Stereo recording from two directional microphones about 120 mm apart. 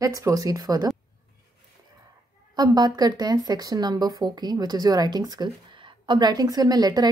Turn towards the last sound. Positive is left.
turn(degrees=-35)  # may be behind; listen again after turning